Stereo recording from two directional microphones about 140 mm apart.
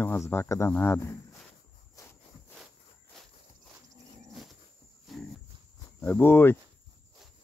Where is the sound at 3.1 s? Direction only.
5° left (ahead or behind).